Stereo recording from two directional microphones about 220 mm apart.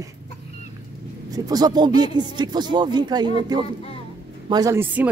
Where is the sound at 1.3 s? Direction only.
15° right (ahead or behind).